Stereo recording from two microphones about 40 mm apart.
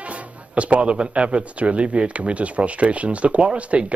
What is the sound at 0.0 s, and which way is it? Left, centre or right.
Speech, right.